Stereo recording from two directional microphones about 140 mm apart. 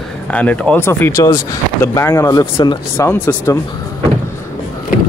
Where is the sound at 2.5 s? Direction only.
35° left (ahead or behind).